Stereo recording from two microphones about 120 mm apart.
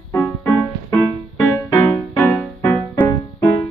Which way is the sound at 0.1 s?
25° left (ahead or behind).